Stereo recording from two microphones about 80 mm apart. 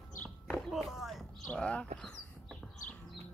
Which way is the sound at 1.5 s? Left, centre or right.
Centre.